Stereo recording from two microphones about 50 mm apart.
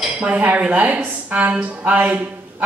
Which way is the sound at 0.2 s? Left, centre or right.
Right.